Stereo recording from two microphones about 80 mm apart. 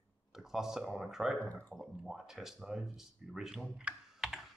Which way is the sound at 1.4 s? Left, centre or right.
Left.